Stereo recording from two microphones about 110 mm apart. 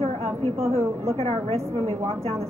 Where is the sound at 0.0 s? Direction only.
70° right (ahead or behind).